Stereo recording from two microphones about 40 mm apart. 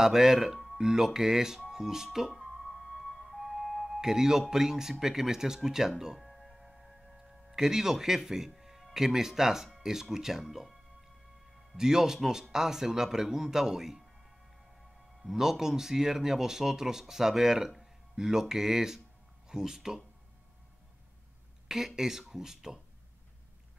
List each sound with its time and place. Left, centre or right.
0.0 s speech: centre
2.1 s music: centre
5.0 s speech: centre
6.2 s music: centre
7.5 s speech: centre
15.2 s speech: centre
21.6 s speech: centre